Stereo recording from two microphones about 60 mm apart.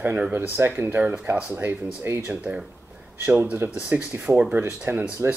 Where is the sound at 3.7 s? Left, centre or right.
Right.